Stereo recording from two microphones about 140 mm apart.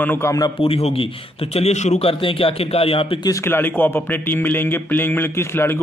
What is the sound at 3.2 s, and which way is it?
A man's voice, 20° left (ahead or behind).